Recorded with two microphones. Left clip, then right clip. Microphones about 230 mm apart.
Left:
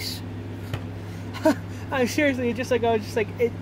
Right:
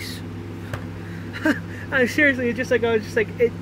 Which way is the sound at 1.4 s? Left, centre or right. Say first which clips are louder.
Left 1 dB; centre.